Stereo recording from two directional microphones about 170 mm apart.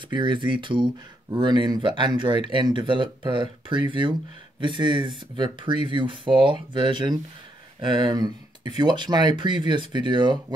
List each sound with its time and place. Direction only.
0.1 s speech: 30° right (ahead or behind)